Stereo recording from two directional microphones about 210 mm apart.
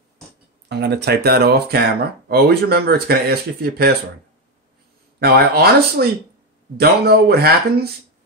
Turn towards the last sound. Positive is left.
turn(degrees=-45)  # may be behind; listen again after turning